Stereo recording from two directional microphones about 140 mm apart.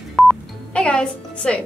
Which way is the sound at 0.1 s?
5° left (ahead or behind).